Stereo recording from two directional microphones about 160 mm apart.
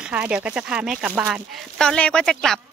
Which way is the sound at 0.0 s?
5° right (ahead or behind).